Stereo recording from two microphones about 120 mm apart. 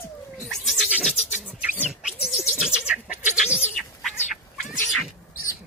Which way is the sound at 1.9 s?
5° right (ahead or behind).